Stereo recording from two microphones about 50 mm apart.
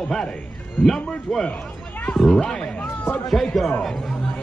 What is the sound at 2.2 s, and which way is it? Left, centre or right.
Speech, centre.